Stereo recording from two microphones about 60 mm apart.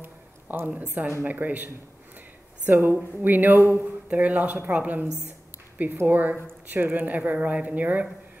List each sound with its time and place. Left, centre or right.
0.0 s a sound: right
1.2 s speech: right
4.1 s speech: right
6.0 s speech: right